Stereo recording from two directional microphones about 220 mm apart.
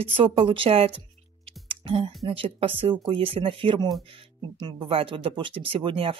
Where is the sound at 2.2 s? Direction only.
25° right (ahead or behind).